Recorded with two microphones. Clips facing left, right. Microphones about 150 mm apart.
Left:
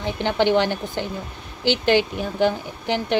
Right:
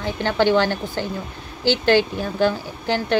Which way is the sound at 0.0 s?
20° left (ahead or behind).